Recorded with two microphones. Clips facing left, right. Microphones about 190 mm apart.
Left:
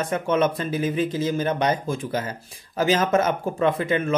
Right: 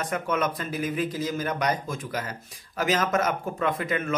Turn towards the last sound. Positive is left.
turn(degrees=30)  # may be behind; listen again after turning